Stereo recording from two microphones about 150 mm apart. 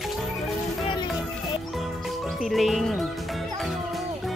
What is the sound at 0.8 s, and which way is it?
Music, 35° left (ahead or behind).